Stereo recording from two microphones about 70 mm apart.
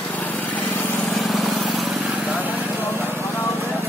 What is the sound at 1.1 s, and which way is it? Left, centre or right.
Vehicle, centre.